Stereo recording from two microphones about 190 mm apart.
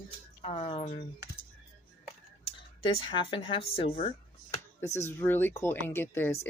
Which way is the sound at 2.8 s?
30° left (ahead or behind).